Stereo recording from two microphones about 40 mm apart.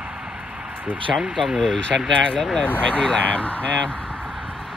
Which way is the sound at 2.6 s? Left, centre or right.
Left.